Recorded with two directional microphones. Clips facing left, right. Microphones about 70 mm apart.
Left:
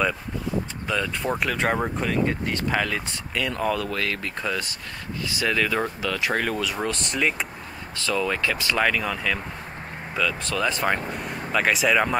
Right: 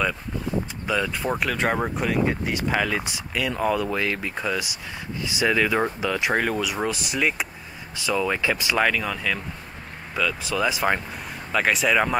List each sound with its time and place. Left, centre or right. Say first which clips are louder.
0.8 s speech: right 2 dB; centre
8.7 s speech: even; centre